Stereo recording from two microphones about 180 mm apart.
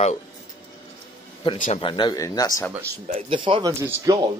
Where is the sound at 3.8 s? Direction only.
15° right (ahead or behind).